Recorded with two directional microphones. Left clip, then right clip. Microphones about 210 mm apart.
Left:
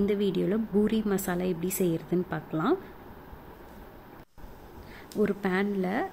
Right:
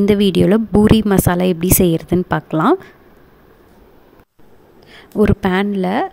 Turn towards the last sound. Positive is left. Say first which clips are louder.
# right 11 dB
turn(degrees=-45)  # may be behind; listen again after turning